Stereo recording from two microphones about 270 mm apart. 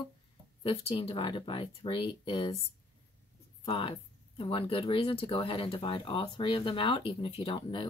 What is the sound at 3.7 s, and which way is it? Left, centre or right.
Speech, centre.